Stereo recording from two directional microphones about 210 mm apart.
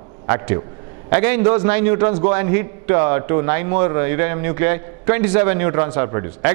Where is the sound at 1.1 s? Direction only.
10° right (ahead or behind).